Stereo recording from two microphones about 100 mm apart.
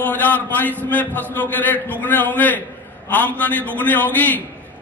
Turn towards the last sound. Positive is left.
turn(degrees=15)  # may be behind; listen again after turning